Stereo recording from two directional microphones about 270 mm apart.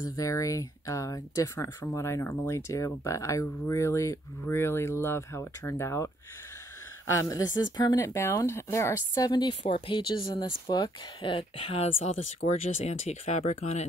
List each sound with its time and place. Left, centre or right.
0.0 s speech: centre
7.2 s speech: centre